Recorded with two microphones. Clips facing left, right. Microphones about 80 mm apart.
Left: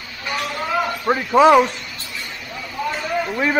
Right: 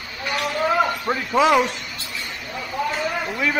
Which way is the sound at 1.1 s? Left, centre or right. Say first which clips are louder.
Left 4 dB; left.